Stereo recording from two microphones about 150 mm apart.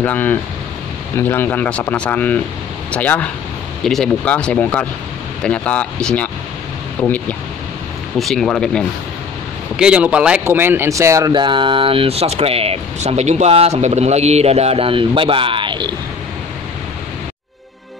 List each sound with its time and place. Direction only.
0.0 s a man's voice: 10° left (ahead or behind)
8.2 s speech: centre (ahead or behind)
9.8 s speech: 5° right (ahead or behind)
11.3 s speech: 35° right (ahead or behind)